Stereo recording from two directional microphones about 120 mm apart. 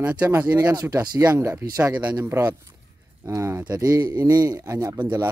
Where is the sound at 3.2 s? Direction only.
25° right (ahead or behind).